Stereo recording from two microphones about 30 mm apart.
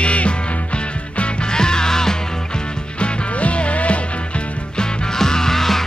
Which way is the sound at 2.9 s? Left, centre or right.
Left.